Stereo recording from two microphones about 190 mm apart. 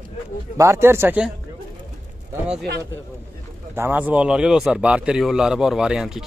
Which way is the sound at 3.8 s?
10° right (ahead or behind).